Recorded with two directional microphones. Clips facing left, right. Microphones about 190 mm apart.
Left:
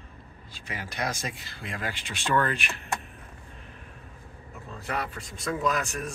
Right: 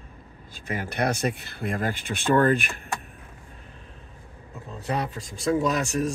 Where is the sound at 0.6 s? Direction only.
55° right (ahead or behind).